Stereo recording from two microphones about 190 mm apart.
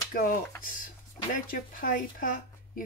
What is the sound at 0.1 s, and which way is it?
Speech, 50° left (ahead or behind).